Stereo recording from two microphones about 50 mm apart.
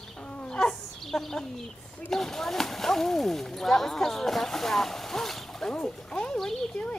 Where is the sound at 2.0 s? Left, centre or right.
Centre.